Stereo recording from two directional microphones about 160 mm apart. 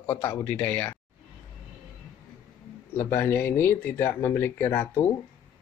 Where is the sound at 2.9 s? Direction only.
15° left (ahead or behind).